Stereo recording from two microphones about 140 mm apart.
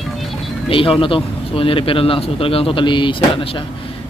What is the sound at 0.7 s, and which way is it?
Speech, 40° left (ahead or behind).